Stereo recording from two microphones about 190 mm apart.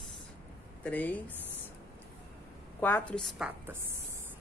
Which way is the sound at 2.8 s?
10° left (ahead or behind).